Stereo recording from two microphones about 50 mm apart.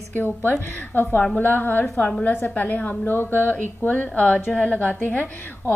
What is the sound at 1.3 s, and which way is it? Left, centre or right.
A woman's voice, left.